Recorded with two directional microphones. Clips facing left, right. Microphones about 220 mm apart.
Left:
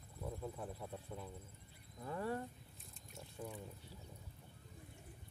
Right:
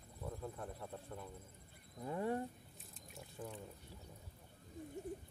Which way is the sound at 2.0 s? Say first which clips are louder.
Right 3 dB; 20° right (ahead or behind).